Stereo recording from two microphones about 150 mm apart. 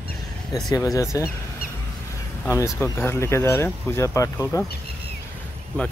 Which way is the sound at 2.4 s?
20° left (ahead or behind).